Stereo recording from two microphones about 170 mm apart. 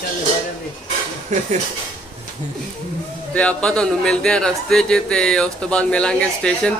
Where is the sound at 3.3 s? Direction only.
5° left (ahead or behind).